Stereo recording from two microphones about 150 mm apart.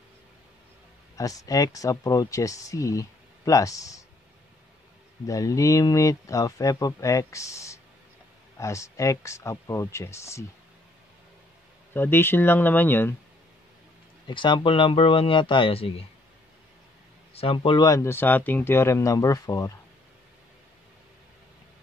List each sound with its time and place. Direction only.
1.1 s speech: 20° left (ahead or behind)
5.2 s speech: 20° left (ahead or behind)
11.9 s speech: 15° left (ahead or behind)
14.2 s speech: 30° left (ahead or behind)
17.3 s speech: 40° left (ahead or behind); by 19.7 s 20° left (ahead or behind)